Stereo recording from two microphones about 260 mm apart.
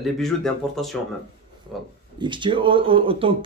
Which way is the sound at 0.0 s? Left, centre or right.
Centre.